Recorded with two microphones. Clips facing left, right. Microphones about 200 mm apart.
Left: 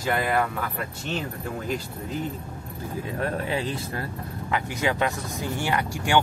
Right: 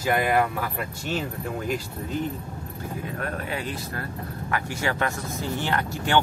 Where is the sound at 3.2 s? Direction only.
25° left (ahead or behind).